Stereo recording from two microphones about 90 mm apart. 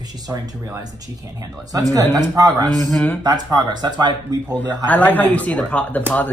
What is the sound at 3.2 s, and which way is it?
Speech, 50° right (ahead or behind).